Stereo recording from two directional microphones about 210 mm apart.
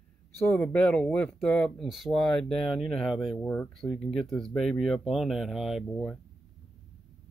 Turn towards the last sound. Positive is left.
turn(degrees=5)  # may be behind; listen again after turning